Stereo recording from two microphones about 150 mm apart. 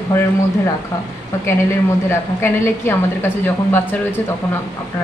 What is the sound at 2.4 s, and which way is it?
A woman's voice, 15° left (ahead or behind).